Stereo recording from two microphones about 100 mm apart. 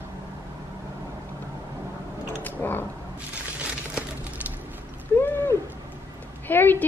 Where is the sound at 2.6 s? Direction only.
25° left (ahead or behind).